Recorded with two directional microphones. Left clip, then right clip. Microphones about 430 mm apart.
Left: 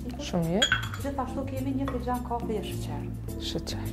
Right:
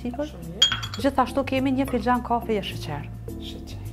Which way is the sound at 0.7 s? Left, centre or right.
Right.